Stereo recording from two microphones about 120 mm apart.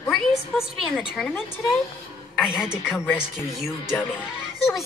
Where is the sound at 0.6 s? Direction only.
5° right (ahead or behind).